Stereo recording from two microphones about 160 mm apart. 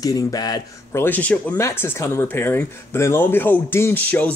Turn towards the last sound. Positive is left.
turn(degrees=10)  # may be behind; listen again after turning